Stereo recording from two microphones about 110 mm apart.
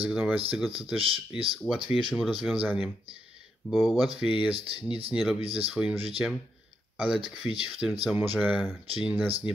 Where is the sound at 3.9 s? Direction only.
10° right (ahead or behind).